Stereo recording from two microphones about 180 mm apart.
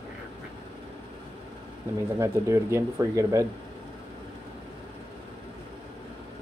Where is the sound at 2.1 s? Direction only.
15° right (ahead or behind).